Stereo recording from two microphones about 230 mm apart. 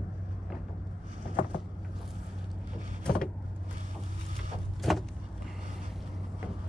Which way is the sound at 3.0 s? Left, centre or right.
Centre.